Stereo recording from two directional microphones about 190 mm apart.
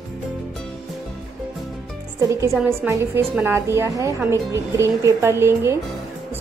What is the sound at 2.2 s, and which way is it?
A woman's voice, 15° right (ahead or behind).